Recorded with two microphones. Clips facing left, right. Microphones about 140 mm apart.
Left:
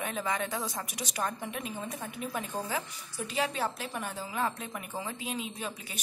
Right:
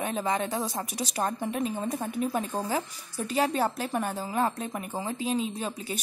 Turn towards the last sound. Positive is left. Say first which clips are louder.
# right 6 dB
turn(degrees=-35)  # may be behind; listen again after turning